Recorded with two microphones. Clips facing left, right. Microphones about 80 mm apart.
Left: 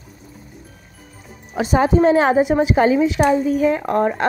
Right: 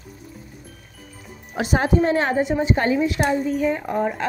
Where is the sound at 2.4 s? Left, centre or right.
Left.